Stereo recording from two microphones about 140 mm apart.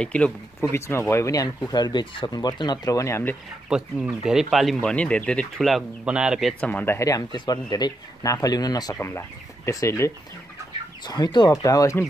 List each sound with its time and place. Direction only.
0.0 s speech: 10° left (ahead or behind)
0.6 s speech: 20° left (ahead or behind)
3.6 s speech: 5° right (ahead or behind)
6.6 s speech: 10° left (ahead or behind)
11.1 s speech: 30° left (ahead or behind)